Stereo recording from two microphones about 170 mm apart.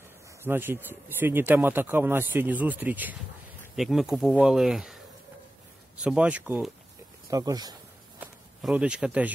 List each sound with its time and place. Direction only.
0.4 s a man's voice: 15° right (ahead or behind)
6.0 s a man's voice: 5° right (ahead or behind)
7.2 s speech: 20° right (ahead or behind)
8.2 s a sound: 5° right (ahead or behind)